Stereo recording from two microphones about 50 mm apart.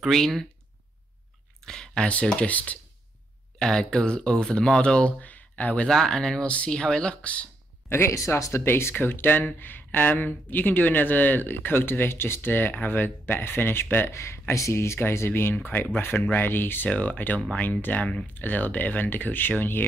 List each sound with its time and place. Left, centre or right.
0.1 s speech: centre
1.7 s a sound: centre
2.3 s speech: left
3.5 s speech: centre
5.3 s a sound: left
5.9 s speech: centre
6.4 s speech: left
7.9 s speech: left
8.6 s speech: left
8.9 s speech: left
14.1 s speech: left
16.9 s speech: left
18.2 s speech: left